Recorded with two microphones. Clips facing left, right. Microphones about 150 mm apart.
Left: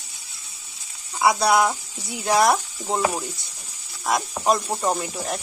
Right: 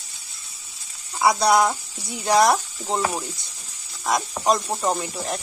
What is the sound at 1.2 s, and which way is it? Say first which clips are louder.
Speech: right 1 dB; centre (ahead or behind).